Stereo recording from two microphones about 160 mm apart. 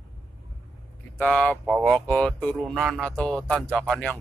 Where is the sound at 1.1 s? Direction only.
5° left (ahead or behind).